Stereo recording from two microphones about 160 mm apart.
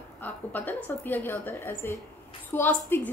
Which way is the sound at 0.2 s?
10° left (ahead or behind).